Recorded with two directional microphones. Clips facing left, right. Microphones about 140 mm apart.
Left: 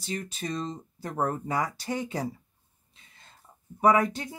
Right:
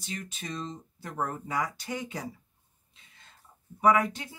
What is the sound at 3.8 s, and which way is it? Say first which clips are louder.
Speech: left 2 dB; 35° left (ahead or behind).